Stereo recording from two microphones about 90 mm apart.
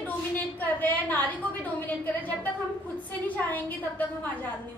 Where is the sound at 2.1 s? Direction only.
20° left (ahead or behind).